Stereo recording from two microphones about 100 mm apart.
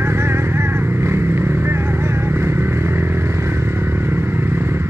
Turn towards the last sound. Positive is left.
turn(degrees=-25)  # may be behind; listen again after turning